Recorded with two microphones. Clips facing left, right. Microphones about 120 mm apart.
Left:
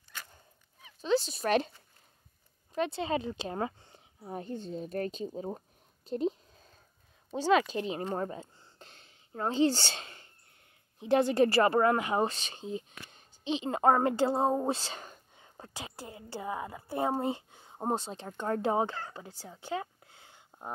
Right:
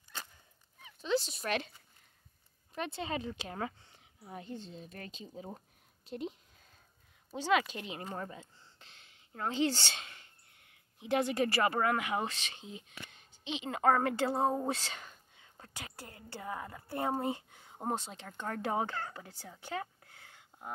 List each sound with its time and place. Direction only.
1.0 s a woman's voice: 35° left (ahead or behind)
2.7 s a woman's voice: 25° left (ahead or behind)
6.0 s a sound: 35° left (ahead or behind)
7.2 s a woman's voice: 30° left (ahead or behind); by 17.2 s 15° left (ahead or behind)
17.2 s speech: 25° left (ahead or behind)
19.5 s a sound: 20° left (ahead or behind)